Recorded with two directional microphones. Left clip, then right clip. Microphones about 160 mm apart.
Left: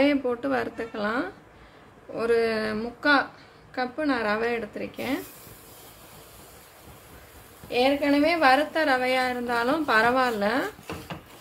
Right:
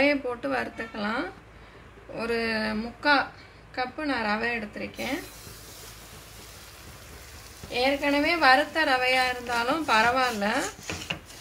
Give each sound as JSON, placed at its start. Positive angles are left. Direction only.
{"t": 0.0, "sound": "a woman's voice", "side_deg": 35}
{"t": 7.7, "sound": "a woman's voice", "side_deg": 45}